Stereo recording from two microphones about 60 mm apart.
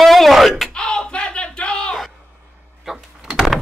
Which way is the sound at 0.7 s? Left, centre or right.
Centre.